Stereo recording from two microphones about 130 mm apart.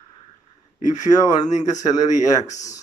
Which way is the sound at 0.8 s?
70° left (ahead or behind).